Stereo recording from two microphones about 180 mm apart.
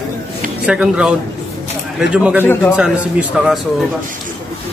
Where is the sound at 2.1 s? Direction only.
5° right (ahead or behind).